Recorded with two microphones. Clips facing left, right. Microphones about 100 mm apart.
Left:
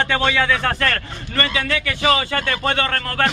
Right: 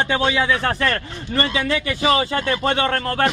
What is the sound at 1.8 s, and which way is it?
Speech, 65° left (ahead or behind).